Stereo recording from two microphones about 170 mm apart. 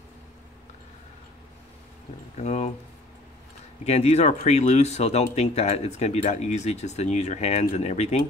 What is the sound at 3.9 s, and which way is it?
Speech, 40° left (ahead or behind).